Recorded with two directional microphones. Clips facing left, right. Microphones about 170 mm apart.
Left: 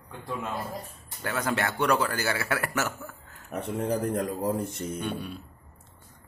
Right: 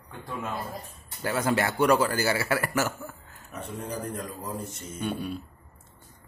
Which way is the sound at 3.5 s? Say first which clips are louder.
Left 6 dB; 60° left (ahead or behind).